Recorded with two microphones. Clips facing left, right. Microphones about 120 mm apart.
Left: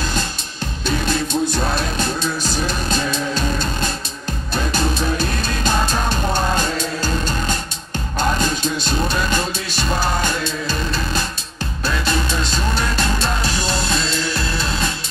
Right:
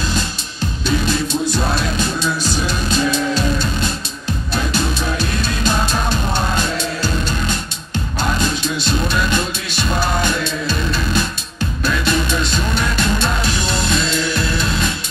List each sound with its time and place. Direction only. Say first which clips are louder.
2.6 s music: right 3 dB; 45° left (ahead or behind)